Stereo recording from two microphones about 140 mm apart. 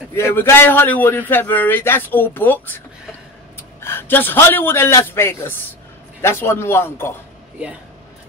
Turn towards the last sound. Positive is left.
turn(degrees=15)  # may be behind; listen again after turning